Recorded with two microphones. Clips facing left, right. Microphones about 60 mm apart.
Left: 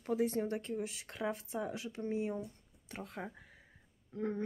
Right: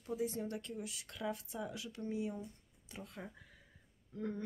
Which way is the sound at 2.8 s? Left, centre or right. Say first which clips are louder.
Left 5 dB; left.